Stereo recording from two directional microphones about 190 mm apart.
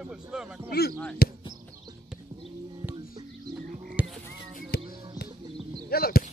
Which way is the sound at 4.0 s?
10° right (ahead or behind).